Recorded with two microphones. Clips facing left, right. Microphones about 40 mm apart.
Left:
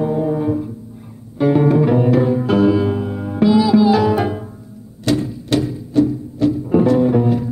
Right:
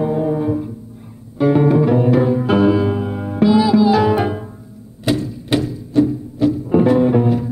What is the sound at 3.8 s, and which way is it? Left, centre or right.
Music, centre.